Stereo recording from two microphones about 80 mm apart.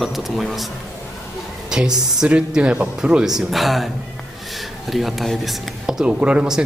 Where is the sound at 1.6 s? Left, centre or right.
Centre.